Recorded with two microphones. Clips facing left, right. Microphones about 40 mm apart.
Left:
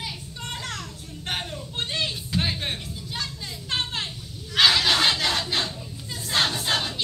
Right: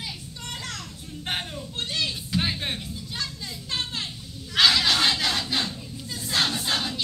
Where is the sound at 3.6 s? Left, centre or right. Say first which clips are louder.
Left 3 dB; left.